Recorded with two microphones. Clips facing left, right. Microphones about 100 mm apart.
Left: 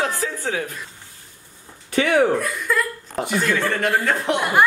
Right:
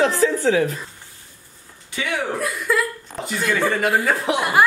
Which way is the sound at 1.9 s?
55° left (ahead or behind).